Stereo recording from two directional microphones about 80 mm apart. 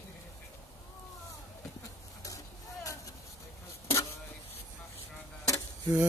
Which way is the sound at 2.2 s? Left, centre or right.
Left.